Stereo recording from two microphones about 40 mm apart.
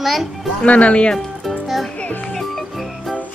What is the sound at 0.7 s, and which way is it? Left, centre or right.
Speech, left.